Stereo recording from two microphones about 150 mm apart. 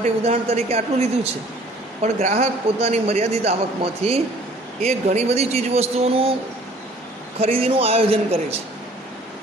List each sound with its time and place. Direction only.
0.0 s a man's voice: 45° right (ahead or behind)
7.3 s a man's voice: 40° right (ahead or behind)